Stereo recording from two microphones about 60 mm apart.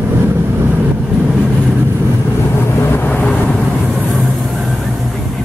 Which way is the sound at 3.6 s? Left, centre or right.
Centre.